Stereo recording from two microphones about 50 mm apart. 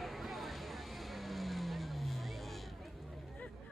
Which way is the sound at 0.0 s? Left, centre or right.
Centre.